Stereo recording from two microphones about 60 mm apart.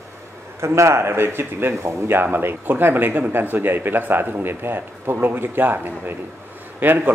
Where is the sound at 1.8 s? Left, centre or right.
Right.